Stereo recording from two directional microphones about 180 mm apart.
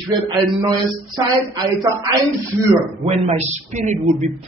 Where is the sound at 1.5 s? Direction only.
20° right (ahead or behind).